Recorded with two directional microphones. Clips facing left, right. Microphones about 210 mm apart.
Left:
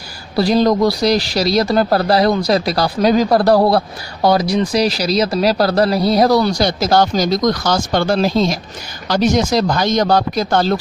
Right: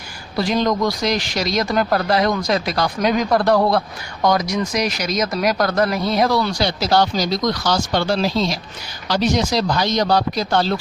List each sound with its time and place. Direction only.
0.4 s a man's voice: 35° left (ahead or behind)